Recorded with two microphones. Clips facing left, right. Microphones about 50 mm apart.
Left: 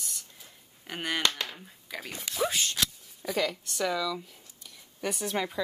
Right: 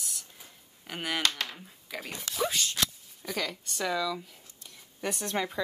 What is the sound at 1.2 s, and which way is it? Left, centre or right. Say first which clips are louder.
Speech: left 1 dB; left.